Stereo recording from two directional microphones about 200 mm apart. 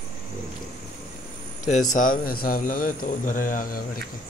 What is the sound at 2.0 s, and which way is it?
Speech, 45° left (ahead or behind).